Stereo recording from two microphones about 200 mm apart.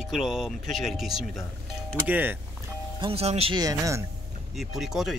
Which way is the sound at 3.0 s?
30° right (ahead or behind).